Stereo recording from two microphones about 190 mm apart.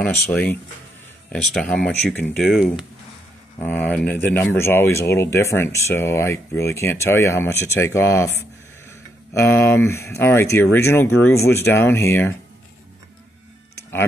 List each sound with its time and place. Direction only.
0.0 s speech: 10° left (ahead or behind)
3.5 s speech: 10° left (ahead or behind)